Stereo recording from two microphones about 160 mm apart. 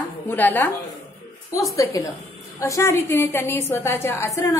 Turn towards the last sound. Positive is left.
turn(degrees=20)  # may be behind; listen again after turning